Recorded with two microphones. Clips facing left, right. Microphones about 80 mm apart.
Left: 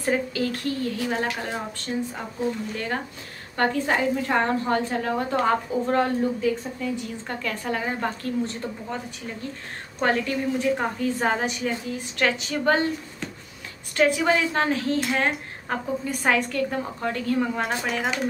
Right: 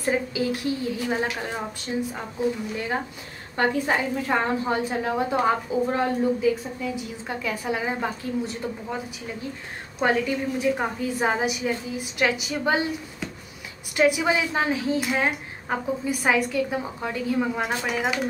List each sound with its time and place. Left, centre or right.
0.0 s a woman's voice: centre
2.7 s a woman's voice: centre